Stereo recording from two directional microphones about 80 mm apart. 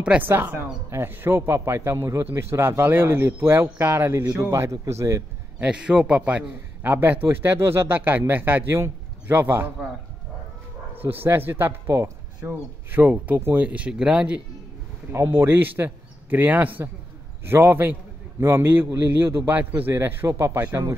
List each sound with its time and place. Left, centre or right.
0.2 s a man's voice: right
5.6 s a man's voice: centre
11.0 s a man's voice: right
15.1 s a man's voice: right